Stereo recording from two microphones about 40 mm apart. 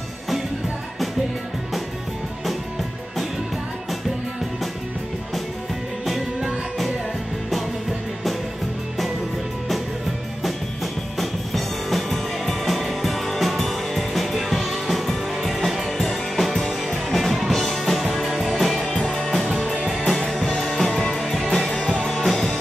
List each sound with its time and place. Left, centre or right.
6.0 s music: centre
11.1 s music: centre
21.2 s music: centre